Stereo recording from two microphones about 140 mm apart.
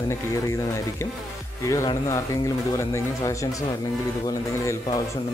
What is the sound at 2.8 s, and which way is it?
Speech, 20° left (ahead or behind).